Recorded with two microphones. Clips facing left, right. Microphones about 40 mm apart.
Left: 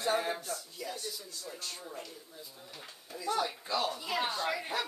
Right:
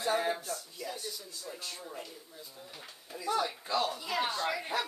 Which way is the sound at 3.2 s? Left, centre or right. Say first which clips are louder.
Right 1 dB; centre.